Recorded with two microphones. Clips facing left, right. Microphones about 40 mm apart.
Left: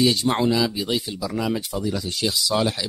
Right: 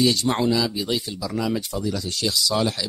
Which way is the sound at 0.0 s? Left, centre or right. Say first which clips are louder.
Left 1 dB; centre.